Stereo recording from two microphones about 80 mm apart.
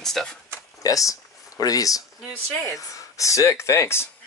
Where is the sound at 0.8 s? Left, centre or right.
Left.